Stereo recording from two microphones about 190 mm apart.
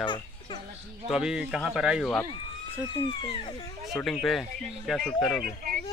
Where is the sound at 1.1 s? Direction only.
5° right (ahead or behind).